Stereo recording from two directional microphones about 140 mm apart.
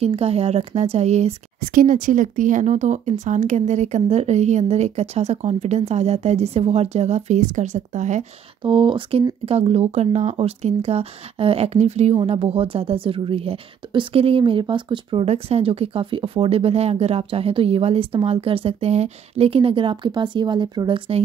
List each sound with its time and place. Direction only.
0.0 s speech: 45° right (ahead or behind)
1.7 s speech: 75° right (ahead or behind); by 8.3 s 60° right (ahead or behind)
8.6 s speech: 35° right (ahead or behind)